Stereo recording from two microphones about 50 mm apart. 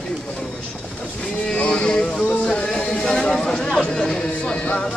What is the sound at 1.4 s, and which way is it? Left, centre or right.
Speech, left.